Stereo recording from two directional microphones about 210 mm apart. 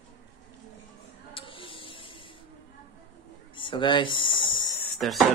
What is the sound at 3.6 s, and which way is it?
Speech, 25° left (ahead or behind).